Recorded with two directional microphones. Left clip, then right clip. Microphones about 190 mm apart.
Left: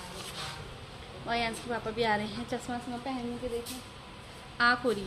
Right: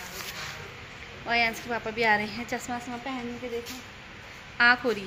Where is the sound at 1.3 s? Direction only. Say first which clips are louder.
Right 6 dB; 10° right (ahead or behind).